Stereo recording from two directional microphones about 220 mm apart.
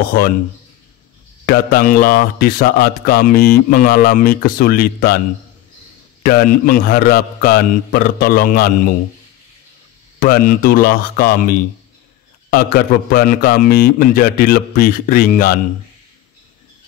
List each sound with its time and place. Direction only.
1.4 s speech: 45° left (ahead or behind)
6.2 s a man's voice: 40° left (ahead or behind)
10.2 s speech: 40° left (ahead or behind)